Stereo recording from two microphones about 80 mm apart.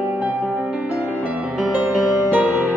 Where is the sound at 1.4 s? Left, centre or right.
Centre.